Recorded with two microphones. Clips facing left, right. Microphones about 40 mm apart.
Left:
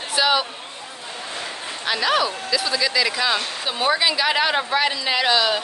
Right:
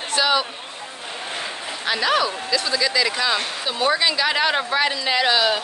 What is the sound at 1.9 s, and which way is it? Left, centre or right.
Speech, centre.